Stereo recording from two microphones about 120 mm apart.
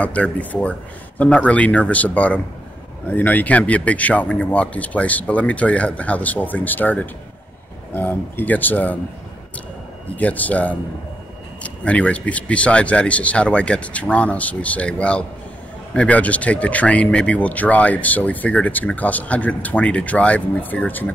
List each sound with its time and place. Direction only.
0.0 s speech: 10° left (ahead or behind)
10.1 s speech: 15° left (ahead or behind)